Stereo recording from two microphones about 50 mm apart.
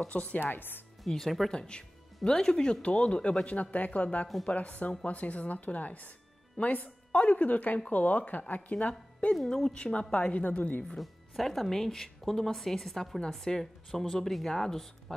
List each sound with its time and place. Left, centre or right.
0.1 s speech: left
0.4 s speech: left
1.0 s speech: centre
1.5 s a woman's voice: centre
9.3 s speech: centre; by 10.9 s left
11.0 s speech: centre